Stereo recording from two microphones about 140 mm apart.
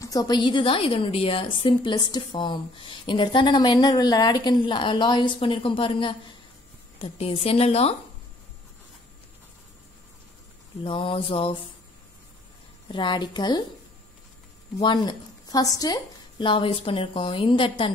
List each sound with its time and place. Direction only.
0.0 s a woman's voice: 25° left (ahead or behind); by 7.9 s 45° left (ahead or behind)
10.8 s a woman's voice: 40° left (ahead or behind)
12.8 s a woman's voice: 35° left (ahead or behind)
14.8 s a woman's voice: 35° left (ahead or behind)